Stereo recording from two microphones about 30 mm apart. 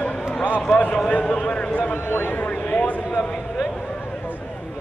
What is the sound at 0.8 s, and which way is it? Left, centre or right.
Speech, left.